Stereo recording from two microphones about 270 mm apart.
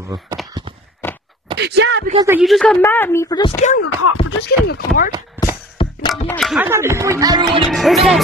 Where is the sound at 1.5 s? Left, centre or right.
Right.